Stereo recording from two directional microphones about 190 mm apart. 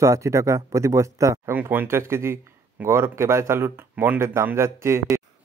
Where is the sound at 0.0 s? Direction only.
15° right (ahead or behind).